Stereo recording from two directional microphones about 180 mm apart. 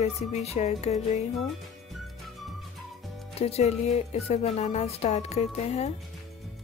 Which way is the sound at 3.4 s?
35° left (ahead or behind).